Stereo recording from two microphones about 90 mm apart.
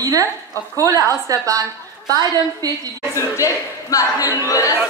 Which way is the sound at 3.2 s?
35° left (ahead or behind).